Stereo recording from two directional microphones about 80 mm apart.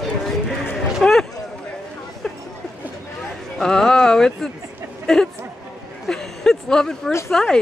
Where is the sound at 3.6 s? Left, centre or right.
Centre.